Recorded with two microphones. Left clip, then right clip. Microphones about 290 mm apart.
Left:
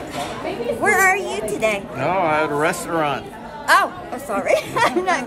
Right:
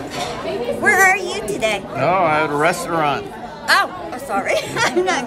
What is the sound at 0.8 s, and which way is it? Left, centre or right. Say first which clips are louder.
Music: right 3 dB; centre.